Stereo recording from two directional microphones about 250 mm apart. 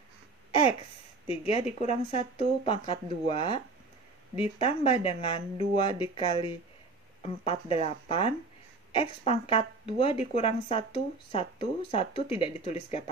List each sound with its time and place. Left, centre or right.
1.2 s speech: left